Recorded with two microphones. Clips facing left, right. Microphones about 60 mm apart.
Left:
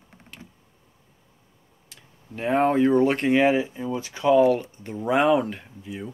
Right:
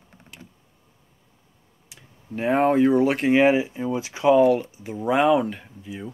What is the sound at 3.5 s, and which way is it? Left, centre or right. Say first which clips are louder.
Speech: right 2 dB; centre.